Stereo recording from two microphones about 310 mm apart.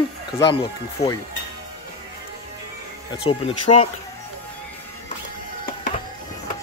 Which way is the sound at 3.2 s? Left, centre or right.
Centre.